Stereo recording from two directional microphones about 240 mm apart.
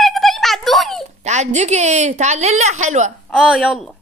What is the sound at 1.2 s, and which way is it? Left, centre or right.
A woman's voice, right.